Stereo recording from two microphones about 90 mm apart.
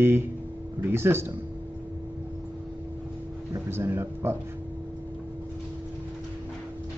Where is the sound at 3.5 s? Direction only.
25° right (ahead or behind).